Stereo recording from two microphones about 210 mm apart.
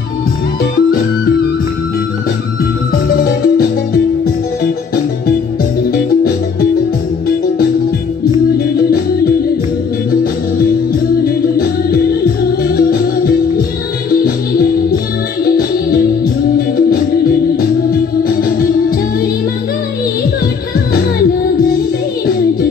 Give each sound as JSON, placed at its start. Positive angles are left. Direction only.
{"t": 3.4, "sound": "music", "side_deg": 45}
{"t": 11.2, "sound": "music", "side_deg": 45}
{"t": 15.4, "sound": "music", "side_deg": 45}
{"t": 18.3, "sound": "music", "side_deg": 45}